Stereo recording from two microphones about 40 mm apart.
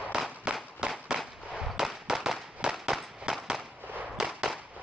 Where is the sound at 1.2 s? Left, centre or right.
Centre.